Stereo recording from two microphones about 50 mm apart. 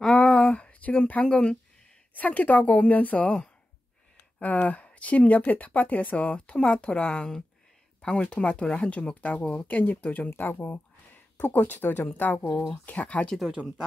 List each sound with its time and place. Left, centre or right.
0.0 s a sound: centre
2.1 s speech: left
4.4 s speech: left
12.4 s speech: centre
12.8 s speech: left
13.6 s speech: right